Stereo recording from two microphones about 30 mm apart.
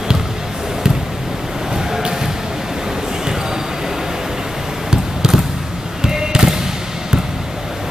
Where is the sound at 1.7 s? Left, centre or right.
Centre.